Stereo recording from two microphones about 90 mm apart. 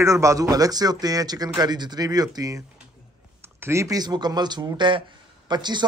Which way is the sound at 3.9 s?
50° right (ahead or behind).